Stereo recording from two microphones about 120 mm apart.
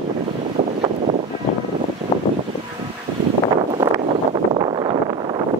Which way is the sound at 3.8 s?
30° right (ahead or behind).